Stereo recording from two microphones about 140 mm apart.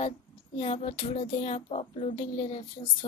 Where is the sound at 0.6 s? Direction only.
45° left (ahead or behind).